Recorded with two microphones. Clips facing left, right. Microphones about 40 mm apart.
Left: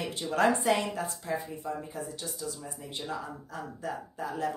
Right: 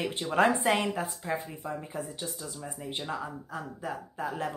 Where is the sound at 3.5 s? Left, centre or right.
Centre.